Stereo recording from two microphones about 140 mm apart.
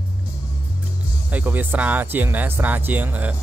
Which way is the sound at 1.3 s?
10° right (ahead or behind).